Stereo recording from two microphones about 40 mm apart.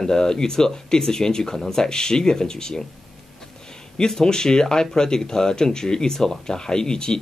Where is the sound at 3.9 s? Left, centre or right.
Centre.